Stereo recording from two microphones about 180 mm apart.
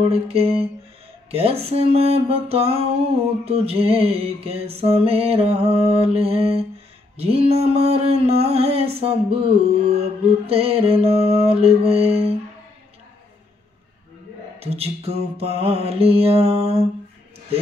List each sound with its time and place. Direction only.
0.1 s music: 35° right (ahead or behind)
14.6 s music: 35° right (ahead or behind)